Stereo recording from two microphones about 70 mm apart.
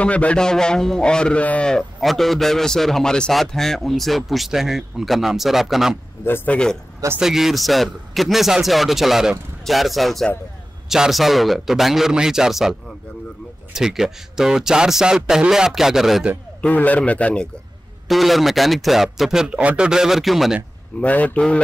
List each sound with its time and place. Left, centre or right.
0.0 s a man's voice: centre
1.7 s a man's voice: centre
6.2 s a man's voice: left
6.5 s a man's voice: centre
7.2 s a man's voice: centre
13.7 s speech: centre
16.6 s a man's voice: left
18.0 s a man's voice: centre
21.0 s a man's voice: left